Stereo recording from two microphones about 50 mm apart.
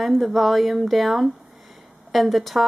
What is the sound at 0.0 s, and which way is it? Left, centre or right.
Speech, centre.